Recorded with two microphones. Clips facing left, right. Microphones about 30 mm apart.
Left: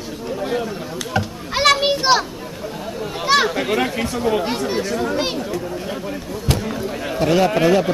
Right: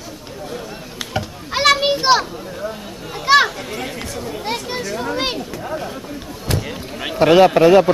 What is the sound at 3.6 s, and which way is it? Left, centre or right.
Speech, left.